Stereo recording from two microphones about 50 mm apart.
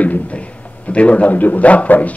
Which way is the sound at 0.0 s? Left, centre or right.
Left.